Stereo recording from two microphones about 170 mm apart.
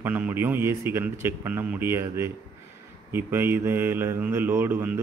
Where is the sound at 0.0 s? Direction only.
10° right (ahead or behind).